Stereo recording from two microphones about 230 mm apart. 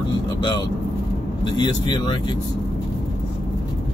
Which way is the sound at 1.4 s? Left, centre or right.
Centre.